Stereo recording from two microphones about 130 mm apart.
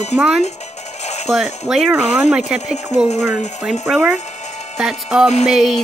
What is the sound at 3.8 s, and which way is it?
Speech, centre (ahead or behind).